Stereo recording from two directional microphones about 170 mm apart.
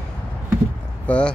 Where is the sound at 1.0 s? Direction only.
5° left (ahead or behind).